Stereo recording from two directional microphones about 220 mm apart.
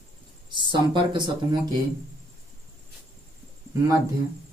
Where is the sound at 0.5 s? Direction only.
20° right (ahead or behind).